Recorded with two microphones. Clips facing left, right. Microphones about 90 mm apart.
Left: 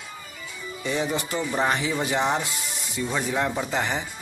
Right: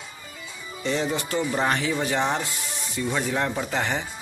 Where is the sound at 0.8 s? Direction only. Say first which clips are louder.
Right 1 dB; 10° left (ahead or behind).